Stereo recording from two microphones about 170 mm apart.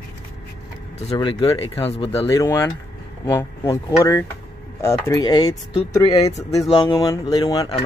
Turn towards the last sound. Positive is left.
turn(degrees=25)  # may be behind; listen again after turning